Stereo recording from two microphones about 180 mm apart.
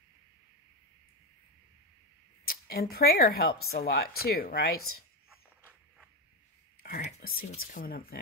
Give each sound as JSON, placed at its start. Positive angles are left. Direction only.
{"t": 2.4, "sound": "speech", "side_deg": 55}
{"t": 6.8, "sound": "speech", "side_deg": 60}